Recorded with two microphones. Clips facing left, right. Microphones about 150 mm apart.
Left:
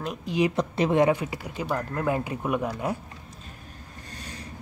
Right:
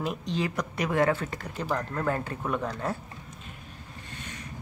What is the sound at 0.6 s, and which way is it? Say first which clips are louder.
Speech: left 3 dB; 25° left (ahead or behind).